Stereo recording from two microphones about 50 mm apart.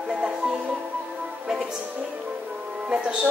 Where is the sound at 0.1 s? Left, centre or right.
Centre.